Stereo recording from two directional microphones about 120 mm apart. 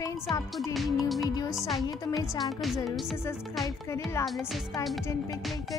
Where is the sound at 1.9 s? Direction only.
30° left (ahead or behind).